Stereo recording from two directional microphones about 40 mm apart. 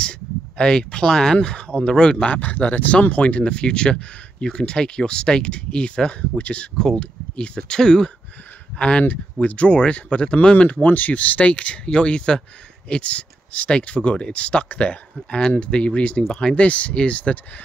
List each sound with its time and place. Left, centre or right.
0.6 s speech: centre
2.2 s speech: left; by 8.1 s centre
8.7 s speech: left
10.8 s speech: left
16.2 s speech: centre
16.6 s speech: left